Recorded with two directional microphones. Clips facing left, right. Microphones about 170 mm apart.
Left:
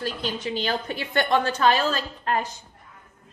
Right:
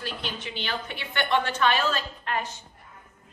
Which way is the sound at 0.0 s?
40° left (ahead or behind).